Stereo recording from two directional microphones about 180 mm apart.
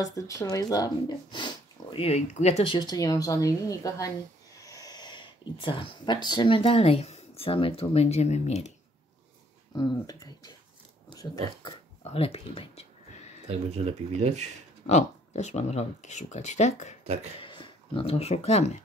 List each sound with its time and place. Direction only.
0.0 s speech: 20° left (ahead or behind)
4.6 s a sound: 20° left (ahead or behind)
6.2 s speech: 25° left (ahead or behind)
9.8 s speech: 20° left (ahead or behind)
11.6 s a sound: 35° left (ahead or behind)
13.5 s speech: 35° right (ahead or behind)
14.9 s speech: 40° left (ahead or behind)
17.0 s speech: 40° right (ahead or behind)
17.4 s speech: 25° left (ahead or behind)